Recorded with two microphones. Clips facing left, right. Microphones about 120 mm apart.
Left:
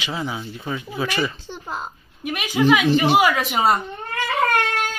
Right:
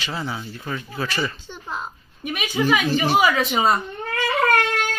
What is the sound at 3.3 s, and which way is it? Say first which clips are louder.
Speech: even; 10° left (ahead or behind).